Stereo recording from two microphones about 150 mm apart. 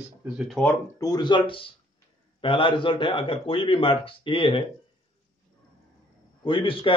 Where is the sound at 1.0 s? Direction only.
30° left (ahead or behind).